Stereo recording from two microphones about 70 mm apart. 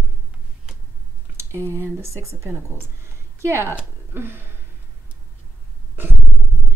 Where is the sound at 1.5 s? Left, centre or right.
Right.